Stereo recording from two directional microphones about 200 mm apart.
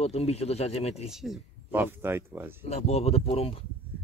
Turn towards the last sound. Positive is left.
turn(degrees=30)  # may be behind; listen again after turning